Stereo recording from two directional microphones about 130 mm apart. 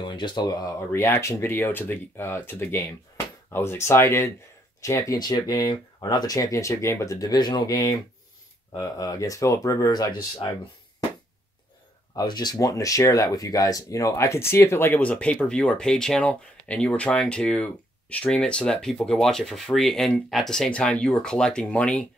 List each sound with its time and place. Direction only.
0.0 s speech: 35° left (ahead or behind)
12.2 s speech: 35° left (ahead or behind); by 22.0 s 10° left (ahead or behind)